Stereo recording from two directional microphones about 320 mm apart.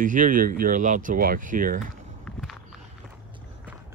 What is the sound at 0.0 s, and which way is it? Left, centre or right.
Speech, right.